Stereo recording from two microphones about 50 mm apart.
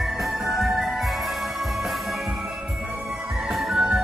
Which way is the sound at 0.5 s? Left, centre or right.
Centre.